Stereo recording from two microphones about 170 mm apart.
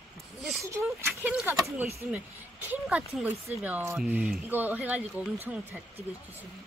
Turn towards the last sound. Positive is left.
turn(degrees=-10)  # may be behind; listen again after turning